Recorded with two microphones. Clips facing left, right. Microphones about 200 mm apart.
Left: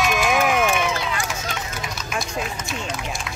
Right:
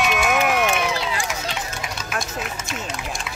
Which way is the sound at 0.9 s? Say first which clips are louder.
Right 1 dB; 30° right (ahead or behind).